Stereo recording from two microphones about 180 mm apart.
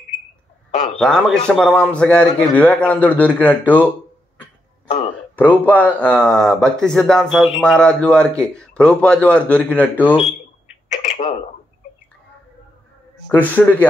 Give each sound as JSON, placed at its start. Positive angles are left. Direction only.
{"t": 0.7, "sound": "a man's voice", "side_deg": 40}
{"t": 0.9, "sound": "a man's voice", "side_deg": 5}
{"t": 5.3, "sound": "a man's voice", "side_deg": 10}
{"t": 10.9, "sound": "a sound", "side_deg": 40}
{"t": 13.3, "sound": "a man's voice", "side_deg": 10}